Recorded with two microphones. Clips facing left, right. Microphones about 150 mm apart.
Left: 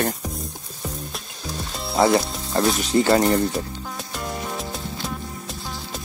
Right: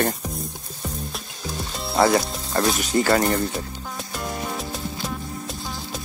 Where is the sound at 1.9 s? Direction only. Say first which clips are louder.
Left 1 dB; centre (ahead or behind).